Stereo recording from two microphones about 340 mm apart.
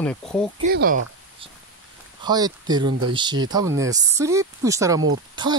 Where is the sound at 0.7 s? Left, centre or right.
Right.